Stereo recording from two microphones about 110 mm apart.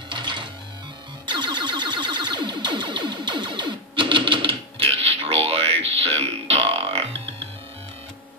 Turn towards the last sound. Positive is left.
turn(degrees=-60)  # may be behind; listen again after turning